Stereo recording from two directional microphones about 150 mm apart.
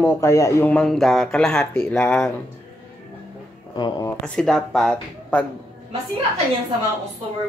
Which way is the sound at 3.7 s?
30° left (ahead or behind).